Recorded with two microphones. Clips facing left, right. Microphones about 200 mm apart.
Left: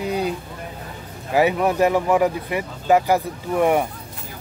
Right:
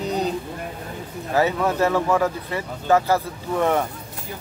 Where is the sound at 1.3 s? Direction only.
15° left (ahead or behind).